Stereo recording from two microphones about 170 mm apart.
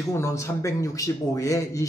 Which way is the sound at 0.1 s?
15° left (ahead or behind).